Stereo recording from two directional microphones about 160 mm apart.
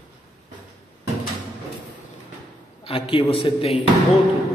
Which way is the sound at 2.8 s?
35° left (ahead or behind).